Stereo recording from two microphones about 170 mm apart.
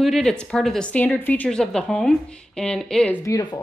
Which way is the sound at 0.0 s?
Centre (ahead or behind).